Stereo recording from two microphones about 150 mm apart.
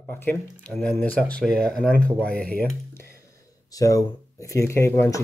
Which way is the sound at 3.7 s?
25° left (ahead or behind).